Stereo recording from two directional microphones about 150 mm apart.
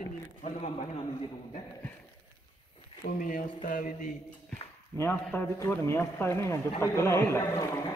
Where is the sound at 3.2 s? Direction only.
65° left (ahead or behind).